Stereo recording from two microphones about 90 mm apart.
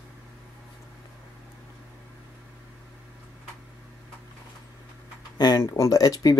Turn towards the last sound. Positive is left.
turn(degrees=45)  # may be behind; listen again after turning